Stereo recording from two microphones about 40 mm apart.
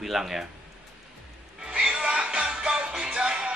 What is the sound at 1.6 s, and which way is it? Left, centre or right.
Music, right.